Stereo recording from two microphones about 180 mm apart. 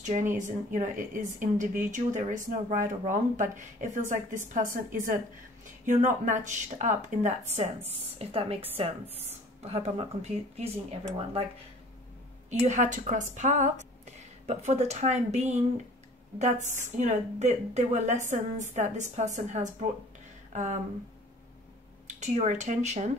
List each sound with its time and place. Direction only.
0.0 s a woman's voice: 45° right (ahead or behind)
12.4 s a woman's voice: 40° right (ahead or behind)
22.0 s speech: 40° right (ahead or behind)